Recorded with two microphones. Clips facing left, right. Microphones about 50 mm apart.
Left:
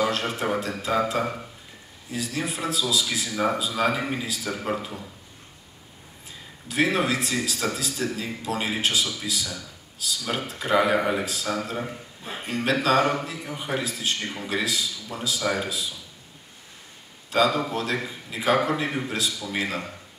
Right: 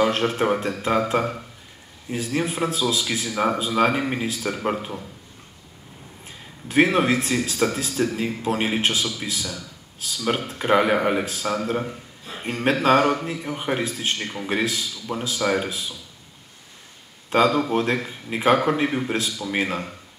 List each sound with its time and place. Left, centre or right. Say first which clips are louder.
0.0 s a man's voice: right 5 dB; right
6.2 s a man's voice: right 2 dB; right
17.3 s a man's voice: right 4 dB; right